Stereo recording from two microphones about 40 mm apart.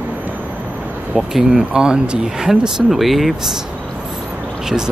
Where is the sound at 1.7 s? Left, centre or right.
Right.